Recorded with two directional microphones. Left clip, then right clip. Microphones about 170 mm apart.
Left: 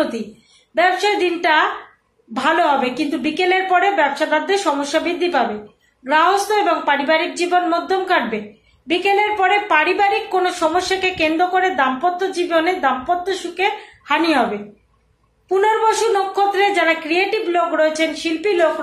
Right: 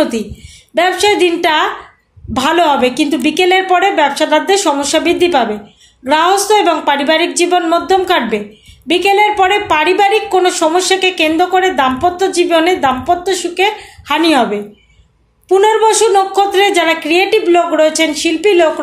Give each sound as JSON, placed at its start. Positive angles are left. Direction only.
{"t": 0.7, "sound": "speech", "side_deg": -40}